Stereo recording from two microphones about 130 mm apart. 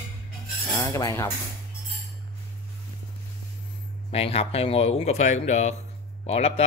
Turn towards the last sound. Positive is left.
turn(degrees=55)  # may be behind; listen again after turning